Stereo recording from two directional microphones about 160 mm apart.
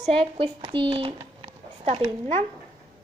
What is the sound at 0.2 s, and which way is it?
Speech, 35° right (ahead or behind).